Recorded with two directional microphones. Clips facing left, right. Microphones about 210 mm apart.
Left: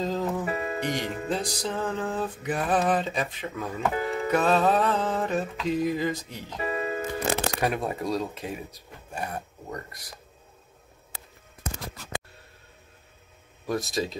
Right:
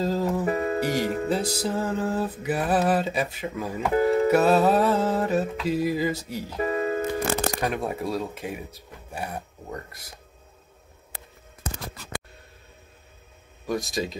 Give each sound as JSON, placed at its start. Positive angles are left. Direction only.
{"t": 0.0, "sound": "music", "side_deg": -5}
{"t": 0.5, "sound": "music", "side_deg": -40}
{"t": 1.3, "sound": "music", "side_deg": -5}
{"t": 3.9, "sound": "speech", "side_deg": -40}
{"t": 4.3, "sound": "music", "side_deg": -10}
{"t": 6.6, "sound": "music", "side_deg": -40}
{"t": 7.6, "sound": "speech", "side_deg": 0}
{"t": 9.1, "sound": "a sound", "side_deg": -5}
{"t": 13.7, "sound": "speech", "side_deg": 0}